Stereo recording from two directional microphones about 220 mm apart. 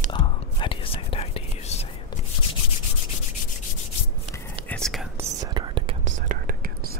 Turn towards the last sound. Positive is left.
turn(degrees=-35)  # may be behind; listen again after turning